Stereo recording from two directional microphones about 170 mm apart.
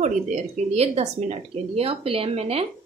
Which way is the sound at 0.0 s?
45° right (ahead or behind).